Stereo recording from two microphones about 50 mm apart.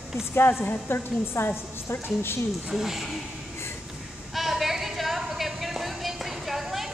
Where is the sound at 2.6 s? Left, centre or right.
Centre.